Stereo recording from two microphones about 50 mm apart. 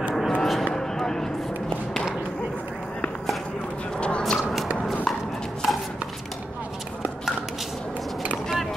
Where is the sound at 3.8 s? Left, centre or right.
Left.